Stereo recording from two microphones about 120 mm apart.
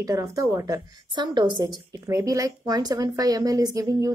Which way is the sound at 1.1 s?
40° right (ahead or behind).